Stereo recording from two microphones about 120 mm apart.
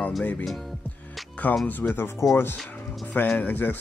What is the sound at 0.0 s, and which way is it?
Speech, 10° left (ahead or behind).